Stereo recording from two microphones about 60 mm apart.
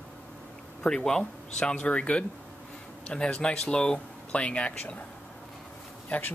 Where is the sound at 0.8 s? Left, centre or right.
Centre.